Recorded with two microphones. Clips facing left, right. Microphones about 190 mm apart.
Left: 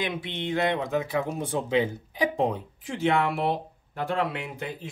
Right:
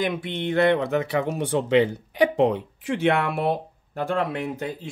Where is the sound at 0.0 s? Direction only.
55° right (ahead or behind).